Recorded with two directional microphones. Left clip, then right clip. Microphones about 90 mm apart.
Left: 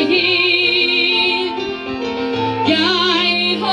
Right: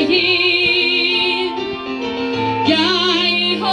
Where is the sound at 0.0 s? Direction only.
40° right (ahead or behind).